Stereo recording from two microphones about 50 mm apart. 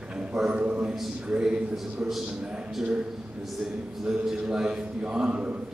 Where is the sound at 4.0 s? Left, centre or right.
Centre.